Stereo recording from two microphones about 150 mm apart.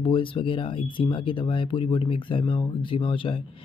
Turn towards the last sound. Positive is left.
turn(degrees=35)  # may be behind; listen again after turning